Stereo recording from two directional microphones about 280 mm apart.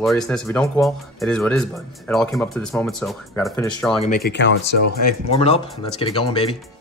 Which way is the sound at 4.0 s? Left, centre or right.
Left.